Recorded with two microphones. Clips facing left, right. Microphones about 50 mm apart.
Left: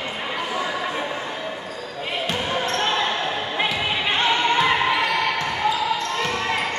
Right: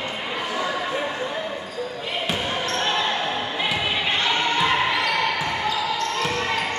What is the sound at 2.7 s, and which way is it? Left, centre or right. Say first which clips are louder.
Basketball bounce: even; centre.